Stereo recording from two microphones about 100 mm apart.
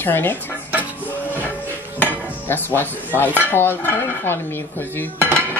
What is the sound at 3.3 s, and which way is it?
Speech, 20° left (ahead or behind).